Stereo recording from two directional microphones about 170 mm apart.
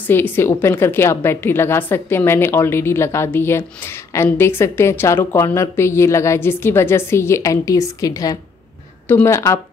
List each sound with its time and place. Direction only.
0.0 s a woman's voice: 10° left (ahead or behind)